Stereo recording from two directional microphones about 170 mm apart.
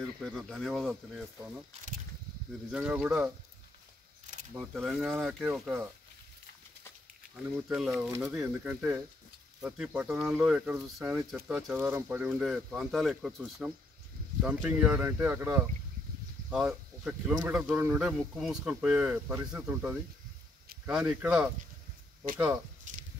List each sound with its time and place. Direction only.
0.2 s speech: centre (ahead or behind)
2.7 s speech: 10° right (ahead or behind)
4.6 s speech: centre (ahead or behind)
7.3 s speech: 5° right (ahead or behind)
22.9 s a sound: 50° right (ahead or behind)